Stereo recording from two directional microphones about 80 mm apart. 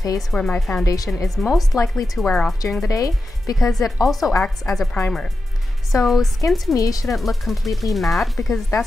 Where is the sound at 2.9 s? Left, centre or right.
Left.